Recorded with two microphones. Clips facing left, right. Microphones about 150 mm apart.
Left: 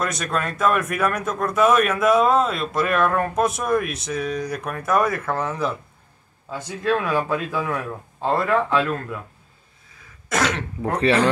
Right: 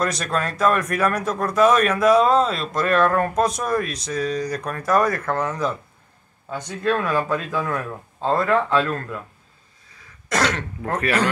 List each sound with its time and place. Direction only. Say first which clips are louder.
0.0 s speech: right 1 dB; centre (ahead or behind)
11.0 s speech: left 3 dB; 25° left (ahead or behind)